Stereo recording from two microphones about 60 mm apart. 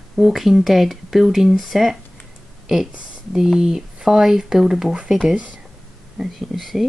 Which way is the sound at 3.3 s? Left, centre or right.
Centre.